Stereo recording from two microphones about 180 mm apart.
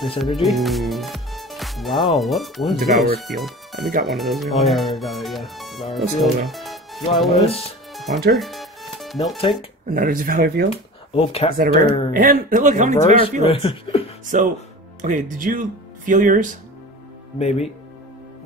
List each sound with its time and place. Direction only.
0.2 s speech: centre (ahead or behind)
7.9 s music: centre (ahead or behind)
9.8 s speech: 50° right (ahead or behind)
10.7 s speech: 30° left (ahead or behind)
12.1 s speech: 50° right (ahead or behind)
13.5 s speech: 30° left (ahead or behind)
14.2 s speech: 45° right (ahead or behind)
17.4 s speech: 35° left (ahead or behind)